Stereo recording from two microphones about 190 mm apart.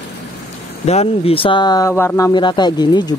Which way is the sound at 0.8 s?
30° left (ahead or behind).